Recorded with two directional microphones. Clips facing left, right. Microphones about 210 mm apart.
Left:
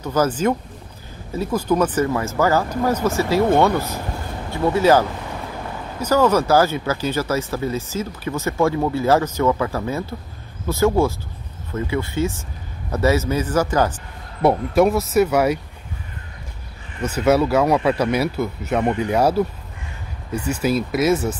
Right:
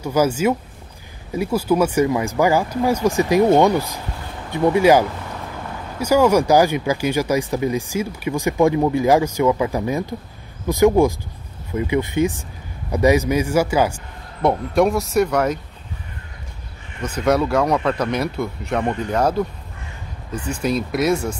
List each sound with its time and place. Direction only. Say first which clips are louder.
0.0 s speech: right 1 dB; 10° right (ahead or behind)
14.4 s speech: left 1 dB; 5° left (ahead or behind)
17.0 s speech: left 2 dB; 5° left (ahead or behind)